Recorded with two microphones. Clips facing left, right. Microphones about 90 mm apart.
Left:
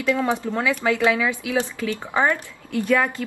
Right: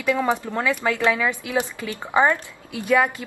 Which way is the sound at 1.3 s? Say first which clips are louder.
Left 1 dB; 10° right (ahead or behind).